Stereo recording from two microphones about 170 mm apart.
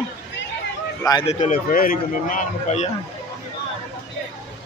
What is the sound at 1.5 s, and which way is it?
Speech, 55° left (ahead or behind).